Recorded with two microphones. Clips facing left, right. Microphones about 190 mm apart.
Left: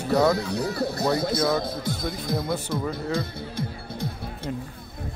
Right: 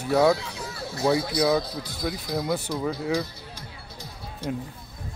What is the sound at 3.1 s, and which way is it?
Music, 55° left (ahead or behind).